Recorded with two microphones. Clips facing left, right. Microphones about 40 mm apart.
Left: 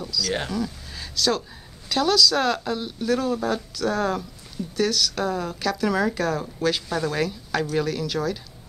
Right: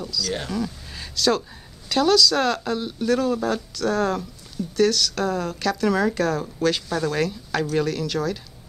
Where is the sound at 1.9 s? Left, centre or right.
Centre.